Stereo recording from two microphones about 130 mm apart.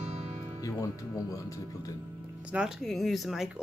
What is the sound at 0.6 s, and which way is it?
Speech, 25° left (ahead or behind).